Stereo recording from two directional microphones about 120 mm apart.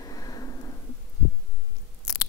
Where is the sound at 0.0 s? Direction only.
30° left (ahead or behind).